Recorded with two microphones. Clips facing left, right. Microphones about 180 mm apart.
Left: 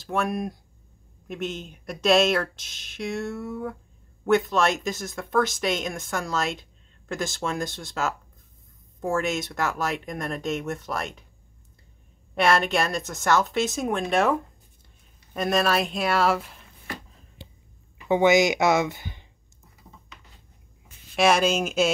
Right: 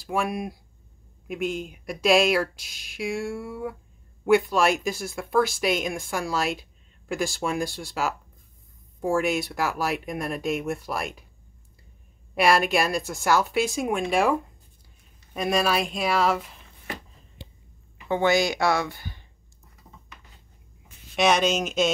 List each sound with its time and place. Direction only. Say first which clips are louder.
0.0 s speech: left 1 dB; centre (ahead or behind)
12.4 s speech: right 1 dB; 5° right (ahead or behind)
18.0 s speech: left 3 dB; 20° left (ahead or behind)
21.2 s speech: left 1 dB; 5° left (ahead or behind)